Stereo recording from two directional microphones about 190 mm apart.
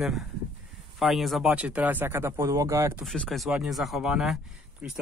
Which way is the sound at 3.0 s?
Centre (ahead or behind).